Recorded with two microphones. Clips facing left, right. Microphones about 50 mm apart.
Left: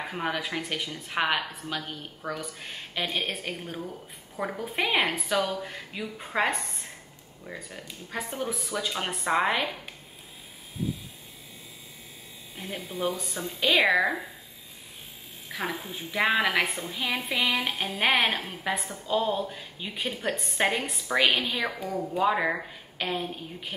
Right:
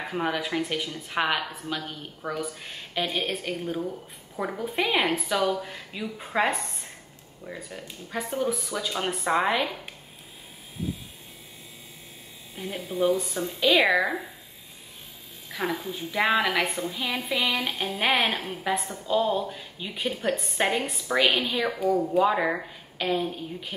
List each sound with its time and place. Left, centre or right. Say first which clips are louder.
0.1 s a woman's voice: right 4 dB; centre
12.5 s a woman's voice: right 5 dB; centre
15.7 s a woman's voice: right 3 dB; centre
17.4 s a sound: even; centre
17.6 s a woman's voice: even; centre